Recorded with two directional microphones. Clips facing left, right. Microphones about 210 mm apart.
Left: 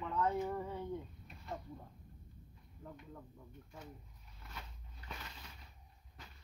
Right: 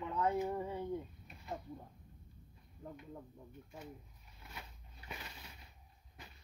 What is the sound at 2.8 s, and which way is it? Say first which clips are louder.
Speech: right 2 dB; 25° right (ahead or behind).